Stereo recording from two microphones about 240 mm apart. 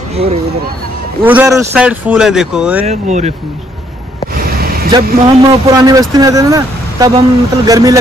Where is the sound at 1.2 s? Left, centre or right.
Centre.